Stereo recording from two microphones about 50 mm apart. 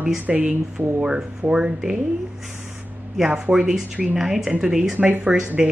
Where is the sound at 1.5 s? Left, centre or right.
Centre.